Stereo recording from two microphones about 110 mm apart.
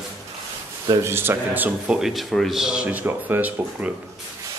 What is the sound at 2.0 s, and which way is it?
Speech, centre (ahead or behind).